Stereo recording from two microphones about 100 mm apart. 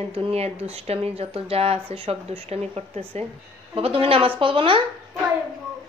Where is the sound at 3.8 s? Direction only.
70° right (ahead or behind).